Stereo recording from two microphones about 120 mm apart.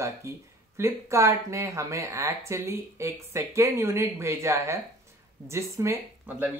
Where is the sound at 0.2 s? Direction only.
25° right (ahead or behind).